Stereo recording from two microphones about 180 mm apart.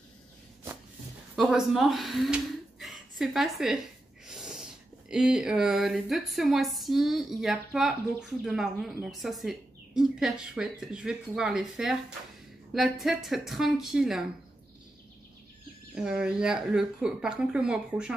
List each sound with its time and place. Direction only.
1.3 s speech: centre (ahead or behind)
4.3 s sneeze: 5° right (ahead or behind)
5.1 s speech: 5° right (ahead or behind)
15.9 s speech: 5° right (ahead or behind)